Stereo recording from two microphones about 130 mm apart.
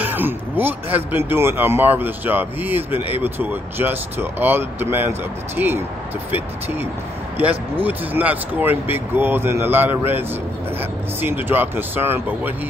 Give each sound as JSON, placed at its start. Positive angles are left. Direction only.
{"t": 0.0, "sound": "speech", "side_deg": -15}
{"t": 2.9, "sound": "speech", "side_deg": 45}
{"t": 3.3, "sound": "speech", "side_deg": -15}
{"t": 7.3, "sound": "speech", "side_deg": -15}